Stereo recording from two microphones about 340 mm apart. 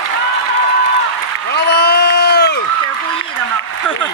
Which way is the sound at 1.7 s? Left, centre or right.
Left.